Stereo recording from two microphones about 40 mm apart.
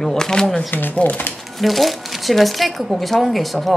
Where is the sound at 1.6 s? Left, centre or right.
Centre.